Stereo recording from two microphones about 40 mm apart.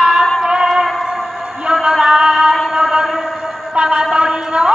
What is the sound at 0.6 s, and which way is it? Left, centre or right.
Music, centre.